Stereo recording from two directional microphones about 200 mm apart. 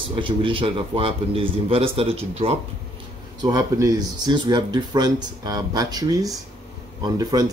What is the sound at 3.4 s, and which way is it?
Speech, 20° right (ahead or behind).